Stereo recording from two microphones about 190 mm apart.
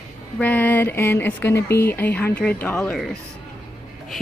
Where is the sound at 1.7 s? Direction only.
10° left (ahead or behind).